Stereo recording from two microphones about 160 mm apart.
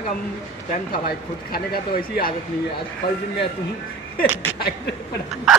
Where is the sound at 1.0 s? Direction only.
70° left (ahead or behind).